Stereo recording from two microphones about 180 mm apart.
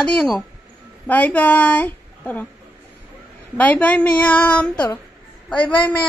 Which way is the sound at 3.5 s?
10° left (ahead or behind).